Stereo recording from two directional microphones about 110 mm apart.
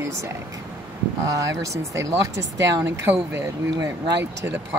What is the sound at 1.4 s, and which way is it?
Speech, 30° right (ahead or behind).